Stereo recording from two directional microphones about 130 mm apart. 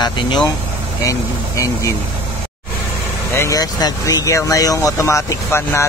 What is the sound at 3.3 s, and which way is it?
Speech, 25° left (ahead or behind).